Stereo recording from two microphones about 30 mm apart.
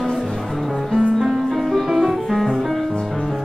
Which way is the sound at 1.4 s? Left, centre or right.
Centre.